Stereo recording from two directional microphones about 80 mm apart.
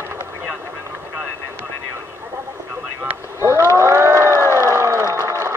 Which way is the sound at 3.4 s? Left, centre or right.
Right.